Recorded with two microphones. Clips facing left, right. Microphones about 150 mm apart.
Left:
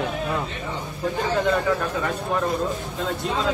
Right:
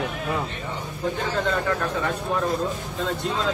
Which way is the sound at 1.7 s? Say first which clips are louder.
Left 1 dB; 5° left (ahead or behind).